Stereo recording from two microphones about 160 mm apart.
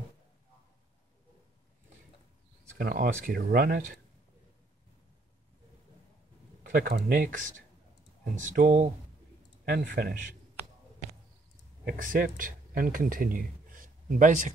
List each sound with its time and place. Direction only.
2.8 s speech: 65° right (ahead or behind)
6.6 s speech: 65° right (ahead or behind)
9.7 s speech: 70° right (ahead or behind)
11.8 s speech: 60° right (ahead or behind)